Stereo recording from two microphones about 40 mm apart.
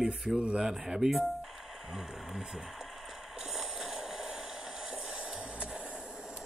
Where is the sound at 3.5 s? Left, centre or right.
Centre; by 5.8 s right.